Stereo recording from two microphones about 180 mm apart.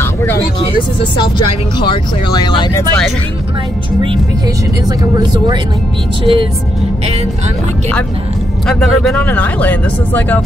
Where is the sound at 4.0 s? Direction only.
25° right (ahead or behind).